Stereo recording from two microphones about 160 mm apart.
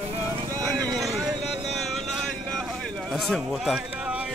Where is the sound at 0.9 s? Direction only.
Centre (ahead or behind).